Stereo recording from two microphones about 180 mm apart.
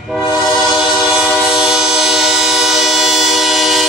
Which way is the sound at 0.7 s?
5° right (ahead or behind).